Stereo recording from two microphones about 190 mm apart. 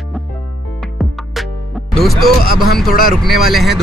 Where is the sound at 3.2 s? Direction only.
Centre (ahead or behind).